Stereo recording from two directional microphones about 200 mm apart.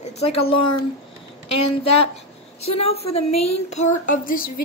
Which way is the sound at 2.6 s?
30° left (ahead or behind).